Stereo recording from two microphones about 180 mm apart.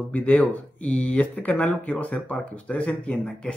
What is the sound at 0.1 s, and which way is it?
A man's voice, 10° left (ahead or behind).